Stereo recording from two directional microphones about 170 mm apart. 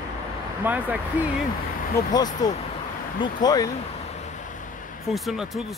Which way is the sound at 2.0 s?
25° left (ahead or behind).